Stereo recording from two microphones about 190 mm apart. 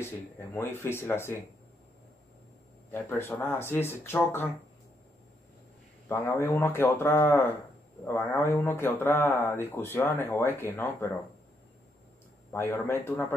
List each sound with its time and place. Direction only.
0.6 s a man's voice: 10° left (ahead or behind)
2.9 s a man's voice: 10° left (ahead or behind)
6.0 s a man's voice: 15° left (ahead or behind)
12.5 s a man's voice: 15° left (ahead or behind)